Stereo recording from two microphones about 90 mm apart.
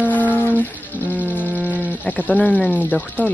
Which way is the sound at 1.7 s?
15° left (ahead or behind).